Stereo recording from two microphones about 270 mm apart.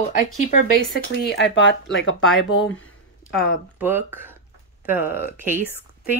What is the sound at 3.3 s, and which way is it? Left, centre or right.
Speech, centre.